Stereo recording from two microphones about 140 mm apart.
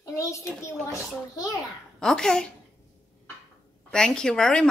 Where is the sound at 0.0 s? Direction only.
20° left (ahead or behind).